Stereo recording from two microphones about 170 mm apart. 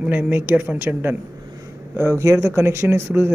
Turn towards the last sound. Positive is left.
turn(degrees=-15)  # may be behind; listen again after turning